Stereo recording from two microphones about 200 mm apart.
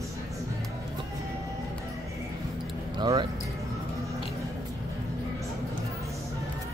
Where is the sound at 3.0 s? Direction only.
20° right (ahead or behind).